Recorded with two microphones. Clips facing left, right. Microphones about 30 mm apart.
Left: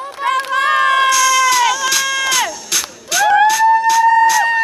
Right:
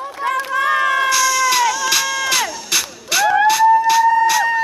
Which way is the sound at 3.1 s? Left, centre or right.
Right.